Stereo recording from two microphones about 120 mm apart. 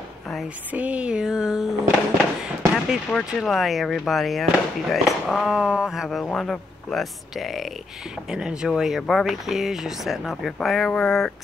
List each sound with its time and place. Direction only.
0.7 s speech: 10° right (ahead or behind); by 11.3 s 5° left (ahead or behind)